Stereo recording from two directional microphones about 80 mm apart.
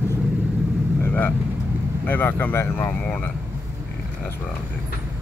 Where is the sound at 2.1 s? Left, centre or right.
Left.